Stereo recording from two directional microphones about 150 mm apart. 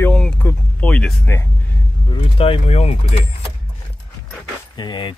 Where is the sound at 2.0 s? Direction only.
35° left (ahead or behind).